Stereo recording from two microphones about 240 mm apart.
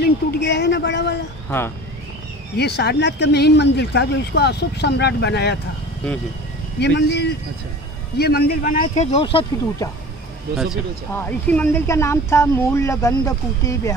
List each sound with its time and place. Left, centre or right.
0.0 s speech: left
2.5 s speech: left
6.8 s speech: left
11.1 s speech: centre